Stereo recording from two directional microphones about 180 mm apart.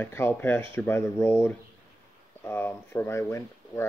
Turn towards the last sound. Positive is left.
turn(degrees=15)  # may be behind; listen again after turning